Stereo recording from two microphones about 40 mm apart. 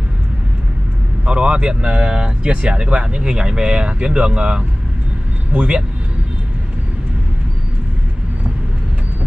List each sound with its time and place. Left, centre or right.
1.2 s speech: right
5.5 s speech: right